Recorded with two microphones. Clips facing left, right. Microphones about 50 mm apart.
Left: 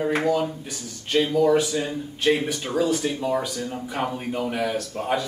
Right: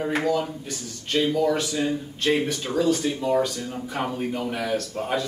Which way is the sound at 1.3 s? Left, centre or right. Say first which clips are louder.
Left 4 dB; centre.